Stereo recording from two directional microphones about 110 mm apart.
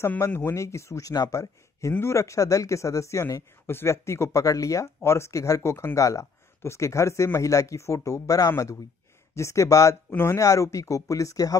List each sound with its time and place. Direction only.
0.0 s speech: 20° left (ahead or behind)